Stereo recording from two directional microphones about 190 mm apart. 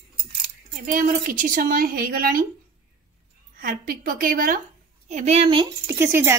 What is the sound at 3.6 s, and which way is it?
Speech, 45° right (ahead or behind).